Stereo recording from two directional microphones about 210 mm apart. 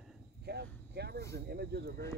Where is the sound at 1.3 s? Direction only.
50° right (ahead or behind).